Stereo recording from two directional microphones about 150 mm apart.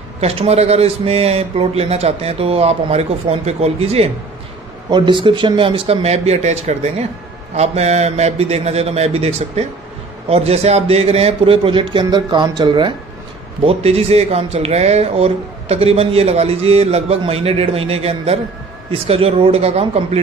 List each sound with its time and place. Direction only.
0.2 s speech: 45° right (ahead or behind)
4.8 s a man's voice: 30° right (ahead or behind)
13.7 s a man's voice: 45° right (ahead or behind)